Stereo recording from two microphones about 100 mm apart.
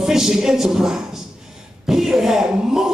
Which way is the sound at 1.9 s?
5° right (ahead or behind).